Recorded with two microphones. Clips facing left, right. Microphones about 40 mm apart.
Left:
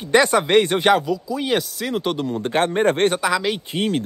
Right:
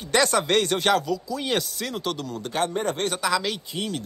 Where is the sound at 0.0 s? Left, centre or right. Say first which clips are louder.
Left 5 dB; centre.